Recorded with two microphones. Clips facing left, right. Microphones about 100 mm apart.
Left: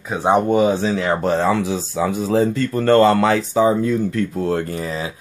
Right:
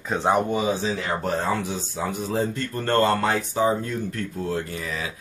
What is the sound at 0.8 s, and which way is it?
Speech, 90° left.